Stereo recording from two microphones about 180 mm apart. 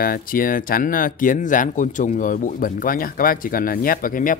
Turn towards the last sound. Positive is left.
turn(degrees=50)  # may be behind; listen again after turning